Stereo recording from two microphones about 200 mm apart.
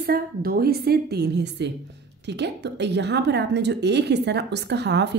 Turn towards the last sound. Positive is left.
turn(degrees=-60)  # may be behind; listen again after turning